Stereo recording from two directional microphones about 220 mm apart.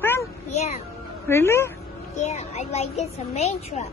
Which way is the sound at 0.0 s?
10° left (ahead or behind).